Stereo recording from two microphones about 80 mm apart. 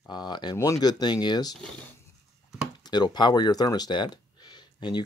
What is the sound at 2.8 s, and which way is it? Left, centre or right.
Speech, left.